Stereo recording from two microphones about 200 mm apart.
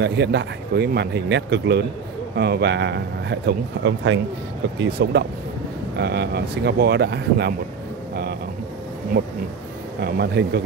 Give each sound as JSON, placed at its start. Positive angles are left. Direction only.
{"t": 0.0, "sound": "speech", "side_deg": -60}
{"t": 4.7, "sound": "speech", "side_deg": -55}
{"t": 9.9, "sound": "speech", "side_deg": -55}